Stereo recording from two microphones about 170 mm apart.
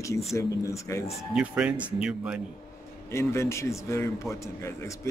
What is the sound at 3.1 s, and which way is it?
A man's voice, 15° left (ahead or behind).